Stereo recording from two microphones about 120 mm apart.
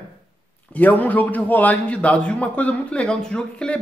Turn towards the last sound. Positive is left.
turn(degrees=10)  # may be behind; listen again after turning